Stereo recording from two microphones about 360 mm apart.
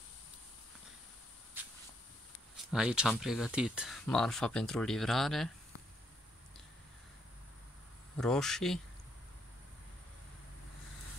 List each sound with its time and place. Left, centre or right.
1.6 s a sound: centre
2.7 s speech: centre
8.2 s speech: centre